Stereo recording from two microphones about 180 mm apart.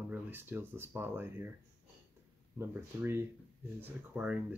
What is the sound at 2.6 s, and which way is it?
Speech, 15° right (ahead or behind).